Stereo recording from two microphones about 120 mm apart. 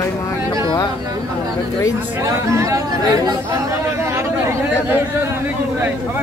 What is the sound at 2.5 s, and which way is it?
Speech, 30° right (ahead or behind).